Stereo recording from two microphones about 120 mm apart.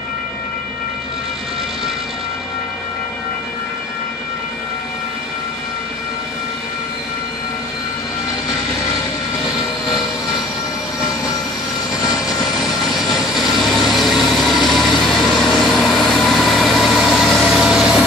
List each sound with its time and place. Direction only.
13.7 s vehicle: centre (ahead or behind)